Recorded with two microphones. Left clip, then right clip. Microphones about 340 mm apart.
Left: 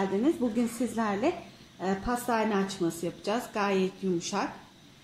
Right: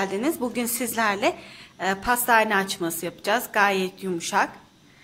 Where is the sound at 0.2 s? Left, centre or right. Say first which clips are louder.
Right 2 dB; right.